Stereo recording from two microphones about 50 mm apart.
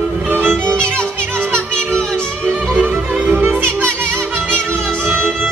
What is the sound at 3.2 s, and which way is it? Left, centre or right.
Music, right.